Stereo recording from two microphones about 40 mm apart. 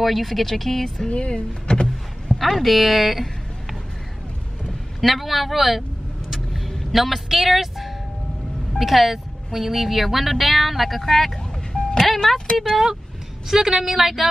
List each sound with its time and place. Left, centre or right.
0.0 s speech: centre
1.0 s speech: left
2.3 s speech: centre
5.0 s speech: centre
6.3 s vehicle: centre
8.7 s speech: centre
11.7 s music: centre
13.5 s a woman's voice: centre